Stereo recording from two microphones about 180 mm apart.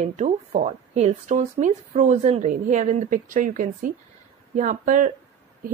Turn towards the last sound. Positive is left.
turn(degrees=-45)  # may be behind; listen again after turning